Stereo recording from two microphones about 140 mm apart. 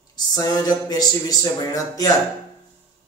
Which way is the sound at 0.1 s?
25° left (ahead or behind).